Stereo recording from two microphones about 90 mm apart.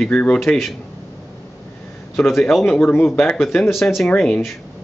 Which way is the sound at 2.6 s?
20° left (ahead or behind).